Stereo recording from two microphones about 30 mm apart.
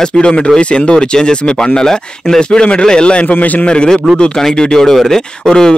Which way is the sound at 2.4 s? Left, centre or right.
Left.